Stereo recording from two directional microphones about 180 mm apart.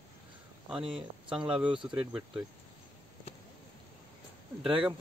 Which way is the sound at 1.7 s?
30° right (ahead or behind).